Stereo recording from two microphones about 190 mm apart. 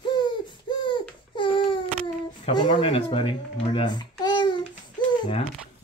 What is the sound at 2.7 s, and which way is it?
Babbling, 30° left (ahead or behind).